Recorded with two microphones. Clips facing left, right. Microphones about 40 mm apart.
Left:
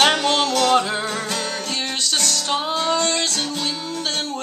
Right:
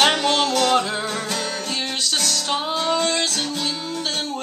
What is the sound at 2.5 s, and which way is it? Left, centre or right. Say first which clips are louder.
Music: left 1 dB; centre.